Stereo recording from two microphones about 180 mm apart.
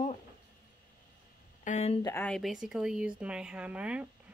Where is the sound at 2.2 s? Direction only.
Centre (ahead or behind).